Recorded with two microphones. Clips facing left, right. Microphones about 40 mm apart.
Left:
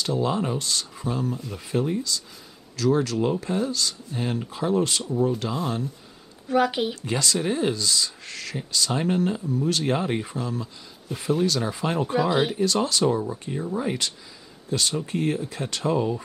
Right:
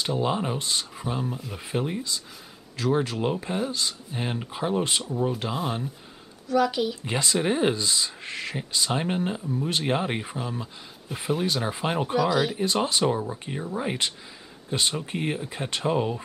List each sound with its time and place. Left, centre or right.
0.0 s speech: right
6.4 s a woman's voice: left
7.0 s speech: right
12.2 s a woman's voice: left
12.5 s speech: right